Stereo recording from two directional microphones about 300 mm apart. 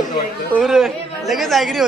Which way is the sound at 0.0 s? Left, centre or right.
Left.